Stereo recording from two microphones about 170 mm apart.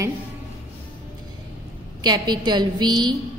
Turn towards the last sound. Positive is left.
turn(degrees=-25)  # may be behind; listen again after turning